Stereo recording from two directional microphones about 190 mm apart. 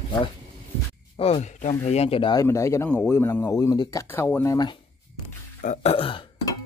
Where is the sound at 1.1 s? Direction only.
35° left (ahead or behind).